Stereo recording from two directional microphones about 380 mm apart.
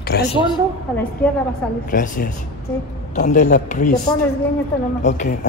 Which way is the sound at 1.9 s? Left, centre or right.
Left.